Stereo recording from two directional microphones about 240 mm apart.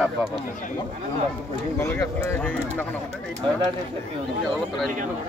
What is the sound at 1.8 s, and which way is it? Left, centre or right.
Speech, centre.